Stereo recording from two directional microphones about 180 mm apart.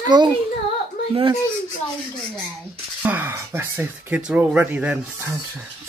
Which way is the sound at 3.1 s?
10° right (ahead or behind).